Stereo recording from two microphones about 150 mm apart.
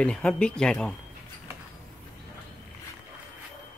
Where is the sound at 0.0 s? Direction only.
5° left (ahead or behind).